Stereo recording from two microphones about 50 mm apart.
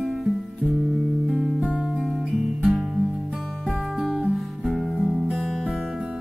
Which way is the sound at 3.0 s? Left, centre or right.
Right.